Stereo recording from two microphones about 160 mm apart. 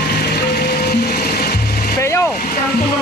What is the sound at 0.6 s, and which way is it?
Music, 85° left.